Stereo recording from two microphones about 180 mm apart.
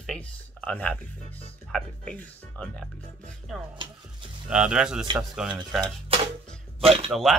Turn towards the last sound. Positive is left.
turn(degrees=0)  # may be behind; listen again after turning